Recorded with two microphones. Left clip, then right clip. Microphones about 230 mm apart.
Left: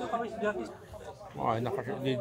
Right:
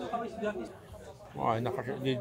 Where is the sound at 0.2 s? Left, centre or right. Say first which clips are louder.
Left 3 dB; left.